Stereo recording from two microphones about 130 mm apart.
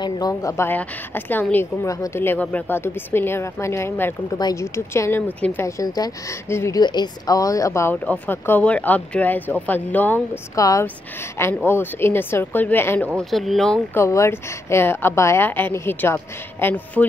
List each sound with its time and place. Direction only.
0.0 s speech: 30° left (ahead or behind)
6.8 s speech: 35° left (ahead or behind)
7.9 s speech: 10° left (ahead or behind)
13.2 s speech: centre (ahead or behind)
13.9 s speech: 20° left (ahead or behind)